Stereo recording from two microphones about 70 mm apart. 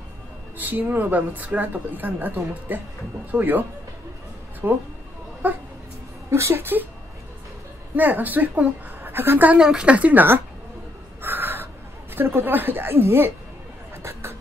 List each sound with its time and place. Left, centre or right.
0.6 s a woman's voice: right
4.6 s a woman's voice: right
6.3 s a woman's voice: right
7.9 s a woman's voice: right
9.6 s speech: centre
11.1 s crow: right
12.2 s a woman's voice: right